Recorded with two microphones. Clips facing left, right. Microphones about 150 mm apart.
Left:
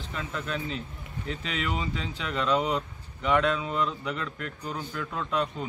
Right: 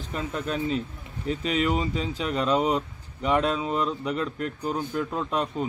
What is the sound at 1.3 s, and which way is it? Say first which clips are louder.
Speech: right 7 dB; 40° right (ahead or behind).